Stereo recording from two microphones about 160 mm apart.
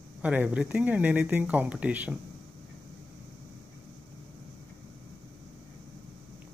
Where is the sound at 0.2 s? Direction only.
10° right (ahead or behind).